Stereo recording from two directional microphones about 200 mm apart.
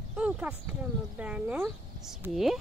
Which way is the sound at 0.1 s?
5° right (ahead or behind).